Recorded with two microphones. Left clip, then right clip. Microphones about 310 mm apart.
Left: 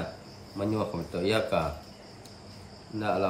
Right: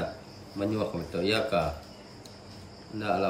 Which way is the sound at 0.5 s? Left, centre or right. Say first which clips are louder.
Even; centre.